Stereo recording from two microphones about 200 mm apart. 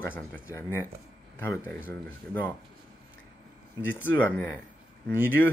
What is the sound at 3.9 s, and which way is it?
Speech, 10° left (ahead or behind).